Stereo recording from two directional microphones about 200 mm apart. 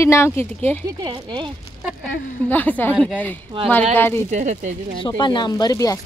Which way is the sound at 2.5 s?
10° left (ahead or behind).